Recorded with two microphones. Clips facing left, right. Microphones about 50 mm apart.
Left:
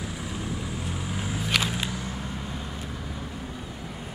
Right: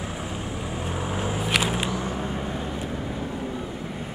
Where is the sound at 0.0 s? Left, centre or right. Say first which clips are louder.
Right 2 dB; right.